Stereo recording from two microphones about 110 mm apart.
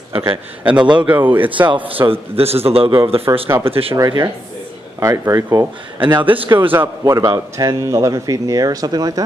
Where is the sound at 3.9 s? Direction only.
35° right (ahead or behind).